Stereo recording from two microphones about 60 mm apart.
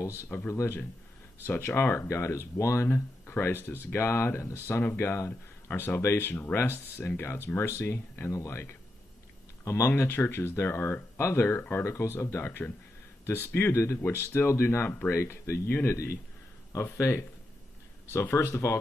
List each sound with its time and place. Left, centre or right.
0.5 s speech: left
2.0 s speech: left
3.3 s speech: left
18.5 s speech: left